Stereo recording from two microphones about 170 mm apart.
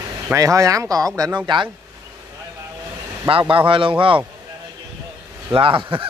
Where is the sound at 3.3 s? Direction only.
30° right (ahead or behind).